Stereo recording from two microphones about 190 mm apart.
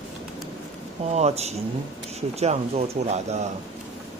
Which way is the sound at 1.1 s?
35° right (ahead or behind).